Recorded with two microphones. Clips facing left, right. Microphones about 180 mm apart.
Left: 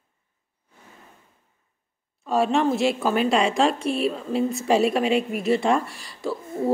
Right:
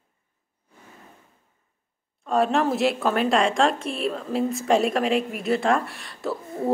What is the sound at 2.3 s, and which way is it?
A woman's voice, centre (ahead or behind).